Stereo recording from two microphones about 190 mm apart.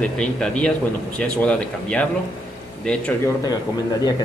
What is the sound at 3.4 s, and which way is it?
Speech, 20° left (ahead or behind).